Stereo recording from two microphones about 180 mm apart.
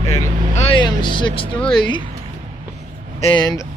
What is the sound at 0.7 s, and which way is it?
Speech, 25° left (ahead or behind).